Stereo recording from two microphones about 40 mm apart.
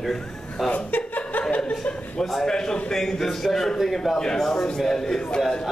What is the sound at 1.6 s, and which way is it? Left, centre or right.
Chuckle, centre.